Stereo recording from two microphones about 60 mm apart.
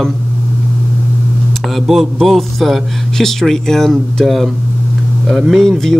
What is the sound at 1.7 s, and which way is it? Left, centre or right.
Speech, centre.